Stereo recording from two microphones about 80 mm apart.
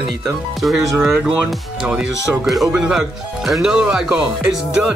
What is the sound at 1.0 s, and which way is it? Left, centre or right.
Speech, centre.